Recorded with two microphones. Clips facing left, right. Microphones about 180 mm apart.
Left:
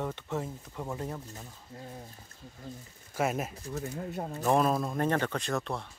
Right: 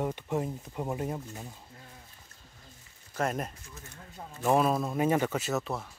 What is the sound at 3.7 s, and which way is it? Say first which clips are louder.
Speech: left 14 dB; 65° left (ahead or behind).